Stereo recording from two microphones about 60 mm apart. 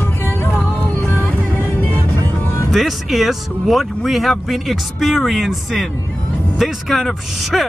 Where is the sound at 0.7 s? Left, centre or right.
Left.